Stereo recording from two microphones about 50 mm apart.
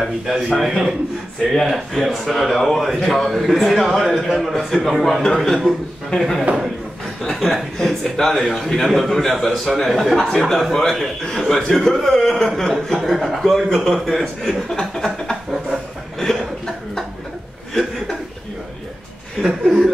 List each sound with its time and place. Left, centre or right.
0.0 s a man's voice: centre
1.5 s a man's voice: centre
16.2 s a sound: centre
19.4 s speech: centre